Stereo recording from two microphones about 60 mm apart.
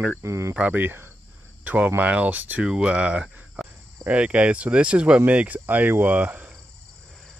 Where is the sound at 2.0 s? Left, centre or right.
Right.